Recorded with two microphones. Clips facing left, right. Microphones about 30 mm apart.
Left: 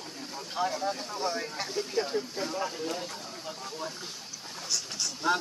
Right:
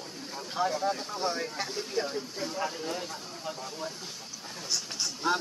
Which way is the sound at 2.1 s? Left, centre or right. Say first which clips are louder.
Left 3 dB; centre.